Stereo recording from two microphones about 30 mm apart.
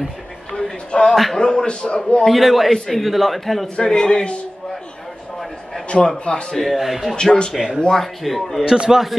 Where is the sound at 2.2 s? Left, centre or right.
Centre.